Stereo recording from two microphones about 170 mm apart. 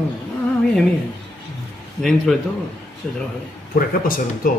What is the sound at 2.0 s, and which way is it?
Speech, centre (ahead or behind).